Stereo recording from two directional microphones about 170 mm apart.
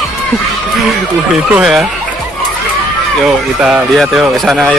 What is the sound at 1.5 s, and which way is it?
Speech, 5° right (ahead or behind).